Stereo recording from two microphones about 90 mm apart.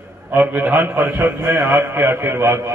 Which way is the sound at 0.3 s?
20° right (ahead or behind).